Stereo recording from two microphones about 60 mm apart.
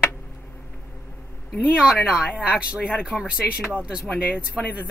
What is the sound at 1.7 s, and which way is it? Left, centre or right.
Speech, centre.